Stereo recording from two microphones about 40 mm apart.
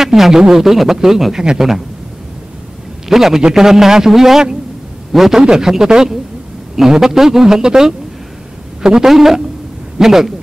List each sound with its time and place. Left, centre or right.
0.0 s a man's voice: centre
3.1 s a man's voice: centre